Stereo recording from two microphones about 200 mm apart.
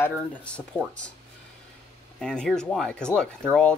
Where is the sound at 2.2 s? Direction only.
5° left (ahead or behind).